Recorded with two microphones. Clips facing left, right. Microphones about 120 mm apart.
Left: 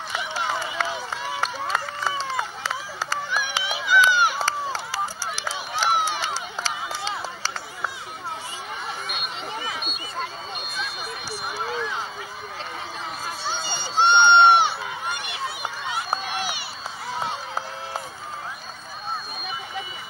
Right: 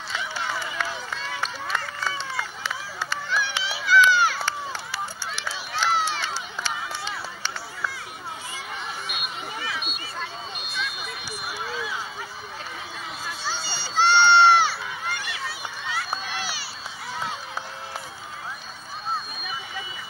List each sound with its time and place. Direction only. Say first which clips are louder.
0.5 s run: left 4 dB; 35° left (ahead or behind)
3.3 s honk: right 1 dB; 15° left (ahead or behind)
3.6 s run: right 1 dB; 20° left (ahead or behind)
4.4 s run: left 4 dB; 35° left (ahead or behind)
5.9 s run: left 1 dB; 15° left (ahead or behind)
7.2 s run: left 2 dB; 35° left (ahead or behind)
9.7 s a sound: left 1 dB; 40° left (ahead or behind)
13.5 s run: left 2 dB; 20° left (ahead or behind)
17.2 s run: left 3 dB; 40° left (ahead or behind)